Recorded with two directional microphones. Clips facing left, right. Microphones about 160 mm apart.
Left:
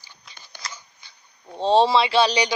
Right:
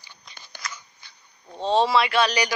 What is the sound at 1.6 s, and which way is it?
Speech, 30° left (ahead or behind).